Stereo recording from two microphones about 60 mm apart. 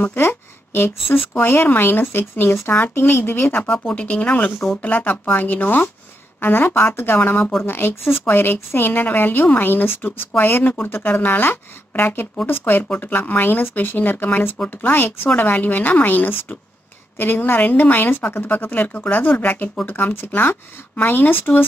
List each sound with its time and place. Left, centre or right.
0.0 s a sound: left
1.1 s a woman's voice: left
3.6 s a woman's voice: left